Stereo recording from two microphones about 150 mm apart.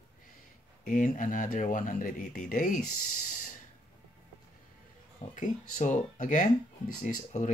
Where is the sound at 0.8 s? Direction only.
60° left (ahead or behind).